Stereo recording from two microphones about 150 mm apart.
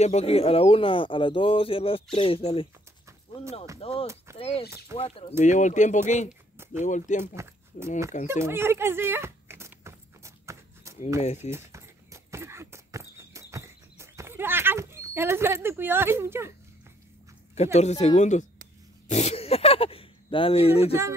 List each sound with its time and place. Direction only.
0.0 s speech: 45° left (ahead or behind)
3.8 s speech: 40° left (ahead or behind)
4.6 s speech: 20° right (ahead or behind)
4.9 s speech: 40° left (ahead or behind)
5.4 s speech: 55° left (ahead or behind)
6.5 s a sound: 15° right (ahead or behind)
6.8 s speech: 55° left (ahead or behind)
8.3 s a sound: 15° right (ahead or behind)
11.1 s speech: 45° left (ahead or behind)
11.5 s a sound: 20° right (ahead or behind)
17.7 s speech: 45° left (ahead or behind)